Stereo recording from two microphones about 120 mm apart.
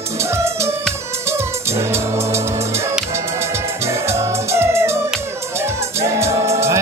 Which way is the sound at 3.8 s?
25° right (ahead or behind).